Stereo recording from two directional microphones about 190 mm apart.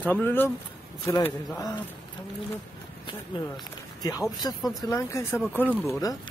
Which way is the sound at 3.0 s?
20° left (ahead or behind).